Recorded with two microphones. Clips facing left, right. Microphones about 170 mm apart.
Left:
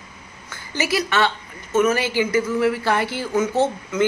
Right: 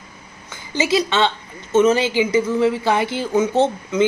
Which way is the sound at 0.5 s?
20° right (ahead or behind).